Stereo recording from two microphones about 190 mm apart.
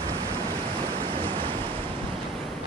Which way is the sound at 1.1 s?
30° right (ahead or behind).